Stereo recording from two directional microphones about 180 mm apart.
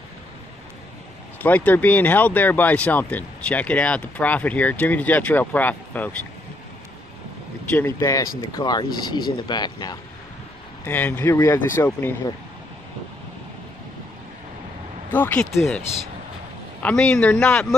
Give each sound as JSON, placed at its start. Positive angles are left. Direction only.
{"t": 1.4, "sound": "speech", "side_deg": 10}
{"t": 7.7, "sound": "speech", "side_deg": 15}
{"t": 10.8, "sound": "speech", "side_deg": 10}
{"t": 15.0, "sound": "speech", "side_deg": 10}
{"t": 16.8, "sound": "speech", "side_deg": 5}